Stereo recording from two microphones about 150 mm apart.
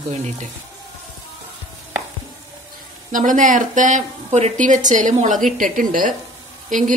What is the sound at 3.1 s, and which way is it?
Speech, 60° right (ahead or behind).